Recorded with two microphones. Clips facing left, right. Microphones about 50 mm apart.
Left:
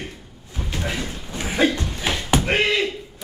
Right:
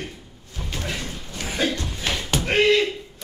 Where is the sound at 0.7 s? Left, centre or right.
Centre.